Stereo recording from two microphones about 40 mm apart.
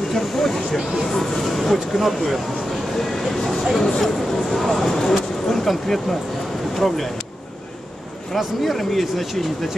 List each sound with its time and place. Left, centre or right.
0.1 s speech: centre
3.7 s speech: centre
4.0 s speech: centre
8.4 s speech: centre